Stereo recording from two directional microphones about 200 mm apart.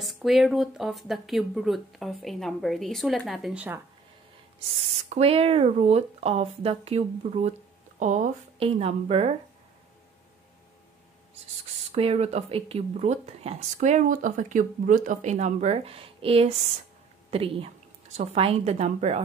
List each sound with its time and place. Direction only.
0.0 s speech: centre (ahead or behind)
5.1 s speech: 30° right (ahead or behind)
11.9 s speech: 30° right (ahead or behind)